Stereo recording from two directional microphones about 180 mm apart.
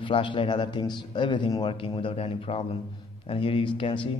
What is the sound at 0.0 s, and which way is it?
A man's voice, 30° left (ahead or behind).